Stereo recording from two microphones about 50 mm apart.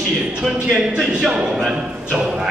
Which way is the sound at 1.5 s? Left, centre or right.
Centre.